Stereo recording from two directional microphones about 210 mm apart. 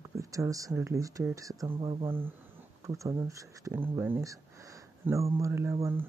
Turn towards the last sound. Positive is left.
turn(degrees=-15)  # may be behind; listen again after turning